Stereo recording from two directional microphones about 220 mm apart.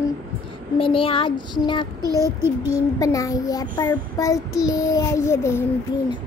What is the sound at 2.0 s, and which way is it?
Child singing, 15° right (ahead or behind).